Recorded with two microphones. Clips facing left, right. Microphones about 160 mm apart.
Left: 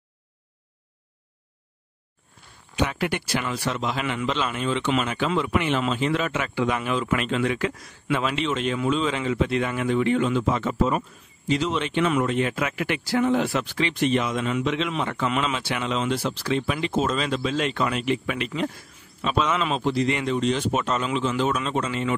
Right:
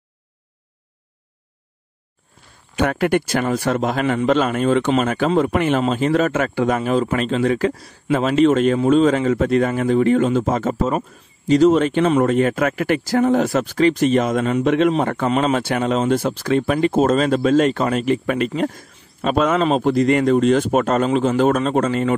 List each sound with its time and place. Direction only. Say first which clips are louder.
2.7 s a man's voice: right 8 dB; 50° right (ahead or behind)